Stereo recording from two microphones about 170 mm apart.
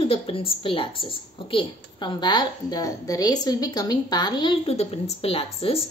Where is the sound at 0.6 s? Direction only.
30° left (ahead or behind).